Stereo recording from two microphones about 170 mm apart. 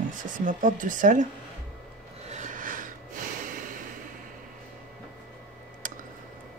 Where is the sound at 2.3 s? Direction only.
45° right (ahead or behind).